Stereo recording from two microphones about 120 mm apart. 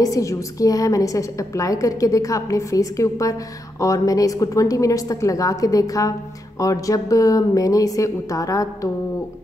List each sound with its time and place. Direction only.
0.0 s a woman's voice: 30° left (ahead or behind)